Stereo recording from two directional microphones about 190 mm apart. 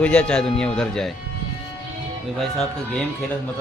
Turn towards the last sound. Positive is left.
turn(degrees=0)  # may be behind; listen again after turning